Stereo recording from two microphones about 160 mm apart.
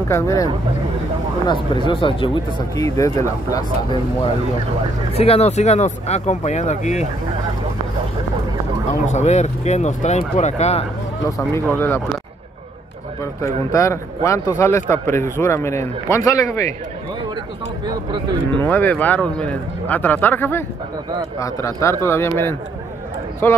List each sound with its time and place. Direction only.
0.1 s speech: 20° left (ahead or behind)
1.5 s speech: 30° left (ahead or behind)
2.7 s speech: 20° left (ahead or behind)
5.1 s speech: 40° left (ahead or behind)
9.0 s speech: 45° left (ahead or behind)
11.2 s speech: 20° left (ahead or behind)
13.2 s speech: 20° left (ahead or behind)
17.8 s speech: 30° right (ahead or behind)
18.6 s speech: 10° left (ahead or behind)